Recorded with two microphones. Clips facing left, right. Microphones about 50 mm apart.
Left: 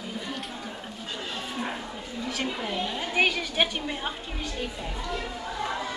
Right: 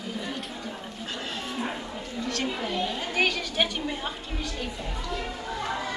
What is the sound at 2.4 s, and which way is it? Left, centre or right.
A woman's voice, centre.